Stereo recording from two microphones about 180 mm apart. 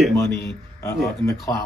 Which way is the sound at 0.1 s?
15° left (ahead or behind).